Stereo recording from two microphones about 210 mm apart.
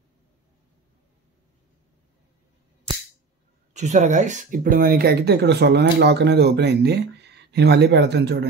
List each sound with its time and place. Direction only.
3.7 s speech: 35° right (ahead or behind); by 8.5 s 55° right (ahead or behind)